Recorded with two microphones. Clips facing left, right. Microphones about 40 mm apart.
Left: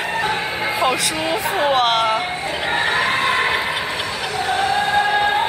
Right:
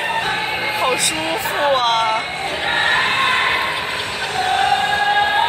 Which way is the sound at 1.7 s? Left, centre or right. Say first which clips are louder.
Right 1 dB; centre.